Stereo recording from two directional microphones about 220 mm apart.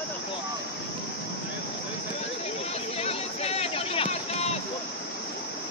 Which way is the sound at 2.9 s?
25° left (ahead or behind).